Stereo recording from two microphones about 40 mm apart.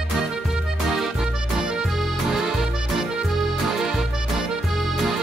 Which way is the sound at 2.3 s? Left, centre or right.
Centre.